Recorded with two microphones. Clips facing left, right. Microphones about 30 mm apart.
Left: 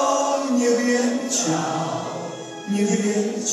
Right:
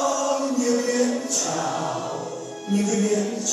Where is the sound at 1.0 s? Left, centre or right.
Centre.